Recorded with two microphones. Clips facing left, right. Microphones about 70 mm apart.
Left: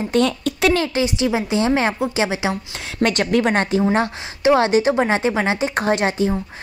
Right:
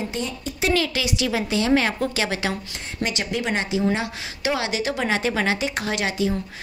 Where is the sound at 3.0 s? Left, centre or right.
Left.